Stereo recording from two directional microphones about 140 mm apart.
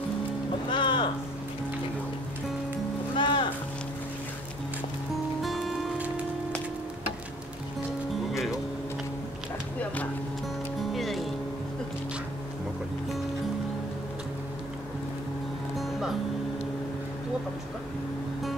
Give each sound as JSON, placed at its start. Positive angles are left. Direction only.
{"t": 0.7, "sound": "boat", "side_deg": 35}
{"t": 3.2, "sound": "music", "side_deg": 35}
{"t": 5.4, "sound": "music", "side_deg": 0}
{"t": 8.3, "sound": "music", "side_deg": 0}
{"t": 10.9, "sound": "music", "side_deg": 0}
{"t": 15.8, "sound": "music", "side_deg": 0}